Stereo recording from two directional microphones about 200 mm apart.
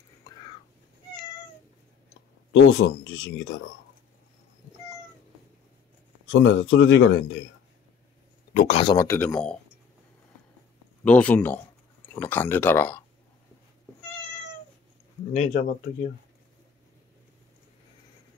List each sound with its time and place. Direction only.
0.2 s whispering: 20° left (ahead or behind)
2.5 s speech: 65° left (ahead or behind)
6.3 s speech: 65° left (ahead or behind)
8.5 s speech: 30° left (ahead or behind)
8.9 s speech: 10° left (ahead or behind)
11.1 s speech: 5° left (ahead or behind)
15.3 s speech: 35° left (ahead or behind)